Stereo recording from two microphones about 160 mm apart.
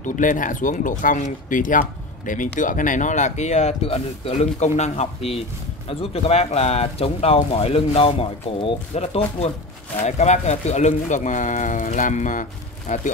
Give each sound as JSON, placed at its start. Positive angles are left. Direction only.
{"t": 0.0, "sound": "speech", "side_deg": 55}